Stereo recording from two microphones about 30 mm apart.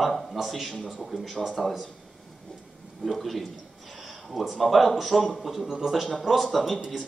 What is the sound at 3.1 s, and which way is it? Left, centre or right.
Speech, centre.